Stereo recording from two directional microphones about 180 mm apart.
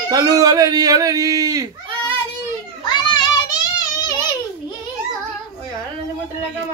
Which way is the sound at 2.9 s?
25° left (ahead or behind).